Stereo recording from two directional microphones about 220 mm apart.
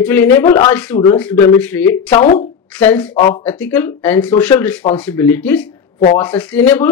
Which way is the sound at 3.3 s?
10° left (ahead or behind).